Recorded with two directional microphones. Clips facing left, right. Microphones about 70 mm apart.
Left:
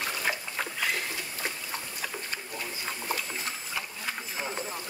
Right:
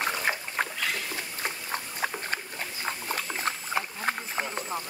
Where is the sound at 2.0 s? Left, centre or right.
Right.